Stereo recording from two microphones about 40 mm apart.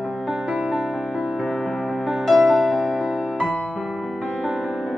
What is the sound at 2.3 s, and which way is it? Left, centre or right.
Music, centre.